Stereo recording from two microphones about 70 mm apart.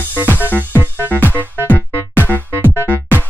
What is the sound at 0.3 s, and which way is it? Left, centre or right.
Music, left.